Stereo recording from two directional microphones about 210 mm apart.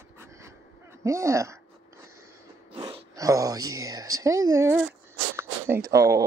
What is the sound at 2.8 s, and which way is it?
Speech, 20° right (ahead or behind).